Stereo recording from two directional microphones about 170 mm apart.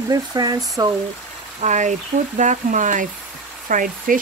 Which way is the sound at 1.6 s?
45° right (ahead or behind).